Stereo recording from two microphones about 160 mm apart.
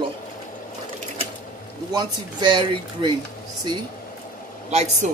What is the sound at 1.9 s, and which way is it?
A woman's voice, 30° right (ahead or behind).